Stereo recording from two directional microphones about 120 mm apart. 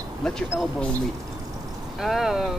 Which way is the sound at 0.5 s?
20° left (ahead or behind).